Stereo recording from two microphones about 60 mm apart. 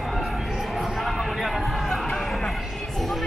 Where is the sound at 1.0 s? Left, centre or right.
Centre.